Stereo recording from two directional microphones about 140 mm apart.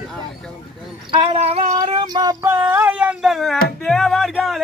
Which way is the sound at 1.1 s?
35° right (ahead or behind).